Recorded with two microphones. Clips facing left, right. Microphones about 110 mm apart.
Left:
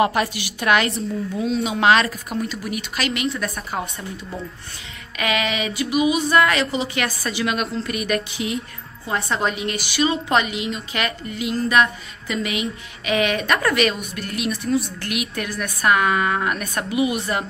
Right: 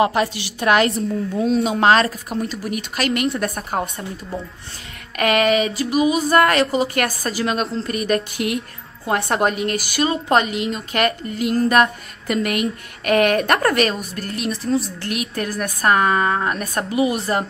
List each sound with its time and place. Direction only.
0.0 s a woman's voice: 30° right (ahead or behind); by 3.8 s 50° right (ahead or behind)
5.1 s speech: 50° right (ahead or behind)
8.4 s speech: 60° right (ahead or behind); by 17.5 s 35° right (ahead or behind)